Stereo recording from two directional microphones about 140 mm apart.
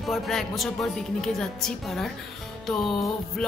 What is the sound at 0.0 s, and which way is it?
Speech, centre (ahead or behind).